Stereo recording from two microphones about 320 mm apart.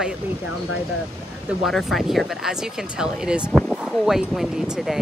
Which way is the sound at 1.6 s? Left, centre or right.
Centre.